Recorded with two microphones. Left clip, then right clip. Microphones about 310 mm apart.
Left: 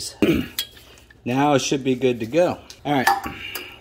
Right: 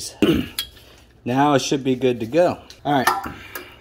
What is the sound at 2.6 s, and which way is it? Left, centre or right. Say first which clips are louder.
Dishes: even; centre.